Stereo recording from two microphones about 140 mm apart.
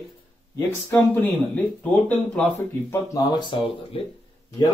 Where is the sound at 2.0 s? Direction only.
10° left (ahead or behind).